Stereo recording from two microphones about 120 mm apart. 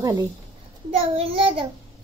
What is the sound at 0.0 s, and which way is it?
Speech, 30° right (ahead or behind).